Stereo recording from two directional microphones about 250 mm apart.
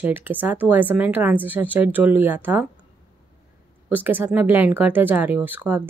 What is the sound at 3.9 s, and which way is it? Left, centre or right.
A woman's voice, centre.